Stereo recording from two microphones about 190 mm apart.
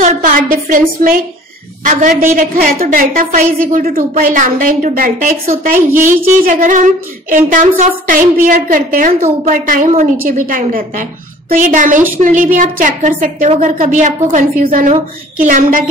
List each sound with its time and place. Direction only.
0.0 s speech: 45° right (ahead or behind)